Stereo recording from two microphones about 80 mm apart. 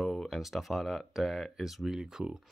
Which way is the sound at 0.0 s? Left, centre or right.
Centre.